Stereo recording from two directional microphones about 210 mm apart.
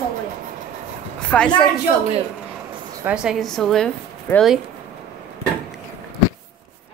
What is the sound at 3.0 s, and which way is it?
A woman's voice, 5° right (ahead or behind).